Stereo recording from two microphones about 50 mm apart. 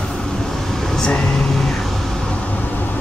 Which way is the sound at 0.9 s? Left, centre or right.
Centre.